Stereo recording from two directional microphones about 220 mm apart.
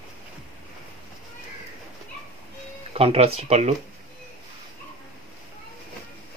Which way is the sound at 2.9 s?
25° right (ahead or behind).